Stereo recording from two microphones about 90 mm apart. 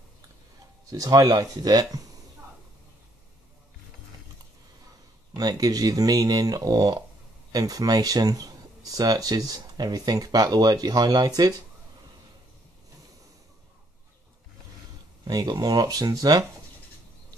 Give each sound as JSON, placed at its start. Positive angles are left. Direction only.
{"t": 0.8, "sound": "speech", "side_deg": -40}
{"t": 5.3, "sound": "speech", "side_deg": -45}
{"t": 15.2, "sound": "speech", "side_deg": -45}